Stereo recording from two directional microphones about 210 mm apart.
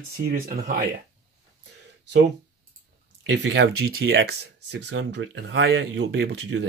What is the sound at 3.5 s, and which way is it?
Speech, 55° right (ahead or behind).